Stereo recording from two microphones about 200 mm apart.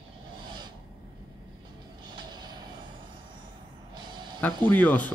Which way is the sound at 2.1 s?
20° right (ahead or behind).